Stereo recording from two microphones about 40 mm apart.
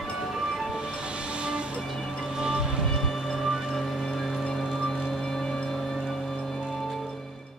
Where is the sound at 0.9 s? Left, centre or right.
Right.